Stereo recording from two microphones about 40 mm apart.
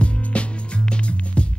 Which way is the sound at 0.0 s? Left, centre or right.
Left.